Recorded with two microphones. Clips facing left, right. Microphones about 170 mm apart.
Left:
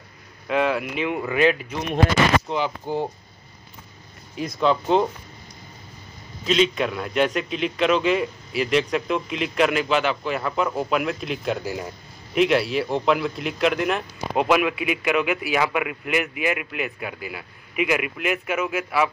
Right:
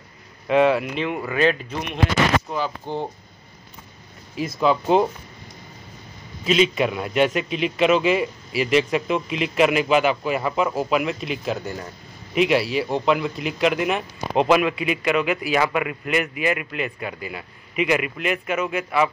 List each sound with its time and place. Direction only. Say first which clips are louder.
0.5 s a man's voice: right 5 dB; centre (ahead or behind)
0.9 s speech: left 1 dB; 15° left (ahead or behind)
2.5 s speech: left 1 dB; 25° left (ahead or behind)
2.9 s speech: left 2 dB; 5° left (ahead or behind)
4.6 s speech: right 1 dB; 5° right (ahead or behind)
6.4 s a man's voice: right 1 dB; 5° right (ahead or behind)